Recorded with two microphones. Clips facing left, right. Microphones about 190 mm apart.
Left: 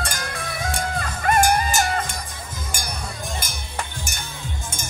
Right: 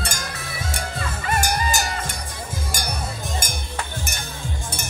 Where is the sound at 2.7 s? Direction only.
40° right (ahead or behind).